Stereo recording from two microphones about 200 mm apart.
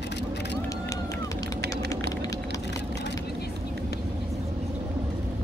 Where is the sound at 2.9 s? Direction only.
60° left (ahead or behind).